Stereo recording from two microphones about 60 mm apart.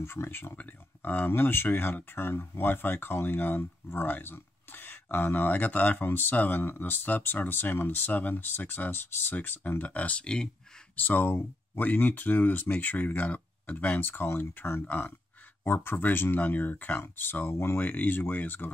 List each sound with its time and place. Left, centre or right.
0.0 s speech: left; by 10.5 s centre
11.0 s speech: left